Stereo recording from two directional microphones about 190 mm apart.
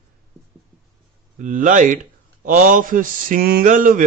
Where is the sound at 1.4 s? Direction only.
45° right (ahead or behind).